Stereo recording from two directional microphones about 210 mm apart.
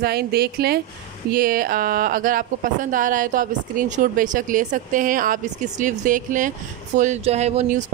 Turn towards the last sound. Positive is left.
turn(degrees=-30)  # may be behind; listen again after turning